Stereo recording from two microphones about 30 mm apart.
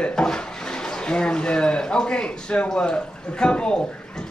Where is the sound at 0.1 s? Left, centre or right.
Left.